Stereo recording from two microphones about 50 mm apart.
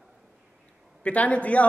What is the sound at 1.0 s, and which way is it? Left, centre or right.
Speech, left.